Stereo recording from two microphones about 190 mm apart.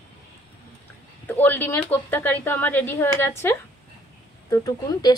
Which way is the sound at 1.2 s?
10° left (ahead or behind).